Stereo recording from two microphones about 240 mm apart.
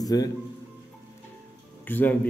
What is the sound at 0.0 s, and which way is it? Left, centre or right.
Speech, centre.